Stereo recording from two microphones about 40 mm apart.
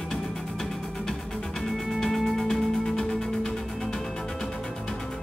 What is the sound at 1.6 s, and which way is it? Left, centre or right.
Music, centre.